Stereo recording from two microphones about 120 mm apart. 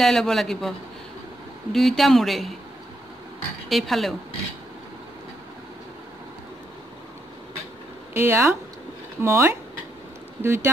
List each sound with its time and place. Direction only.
0.0 s speech: 5° left (ahead or behind)
3.6 s a woman's voice: centre (ahead or behind)
8.1 s speech: 20° right (ahead or behind)